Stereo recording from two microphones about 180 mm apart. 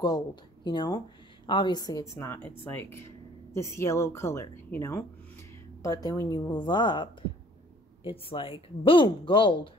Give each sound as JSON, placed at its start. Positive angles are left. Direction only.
{"t": 0.7, "sound": "a woman's voice", "side_deg": 25}